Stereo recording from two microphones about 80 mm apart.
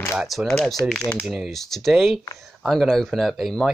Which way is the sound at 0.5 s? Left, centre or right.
Centre.